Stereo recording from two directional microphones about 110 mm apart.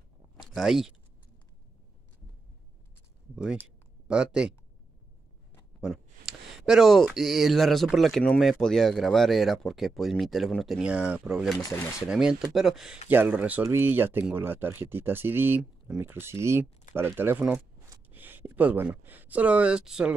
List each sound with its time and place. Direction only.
0.4 s speech: centre (ahead or behind)
3.6 s speech: 10° right (ahead or behind)
5.8 s a sound: 5° right (ahead or behind)
7.2 s speech: centre (ahead or behind)
13.1 s speech: 15° right (ahead or behind)